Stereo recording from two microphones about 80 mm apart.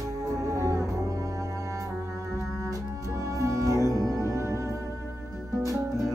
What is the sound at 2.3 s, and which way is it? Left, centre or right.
Music, right.